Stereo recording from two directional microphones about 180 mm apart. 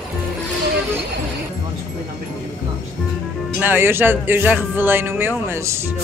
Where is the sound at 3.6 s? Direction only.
10° right (ahead or behind).